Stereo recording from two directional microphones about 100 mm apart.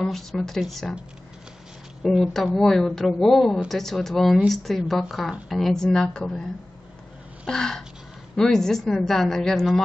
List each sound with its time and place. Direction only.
0.0 s speech: centre (ahead or behind)
2.1 s a woman's voice: centre (ahead or behind)
7.4 s a sound: 5° left (ahead or behind)
8.4 s speech: 5° left (ahead or behind)